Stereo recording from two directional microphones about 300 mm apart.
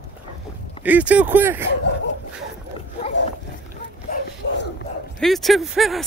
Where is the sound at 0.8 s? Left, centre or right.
Centre.